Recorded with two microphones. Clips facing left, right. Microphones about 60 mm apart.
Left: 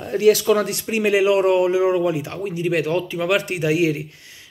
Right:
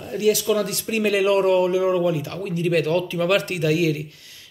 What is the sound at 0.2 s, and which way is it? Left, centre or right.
Speech, left.